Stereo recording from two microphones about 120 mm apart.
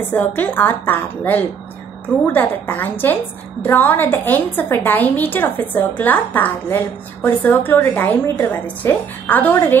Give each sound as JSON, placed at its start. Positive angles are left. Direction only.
{"t": 0.1, "sound": "a woman's voice", "side_deg": 15}